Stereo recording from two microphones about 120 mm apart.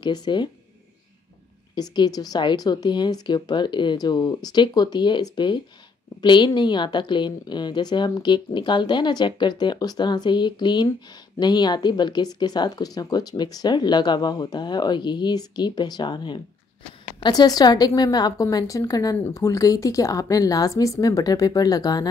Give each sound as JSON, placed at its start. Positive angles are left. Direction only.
{"t": 0.0, "sound": "speech", "side_deg": 35}
{"t": 1.8, "sound": "a woman's voice", "side_deg": 35}